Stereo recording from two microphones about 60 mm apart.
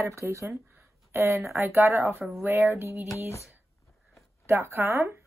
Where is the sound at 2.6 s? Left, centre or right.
Right.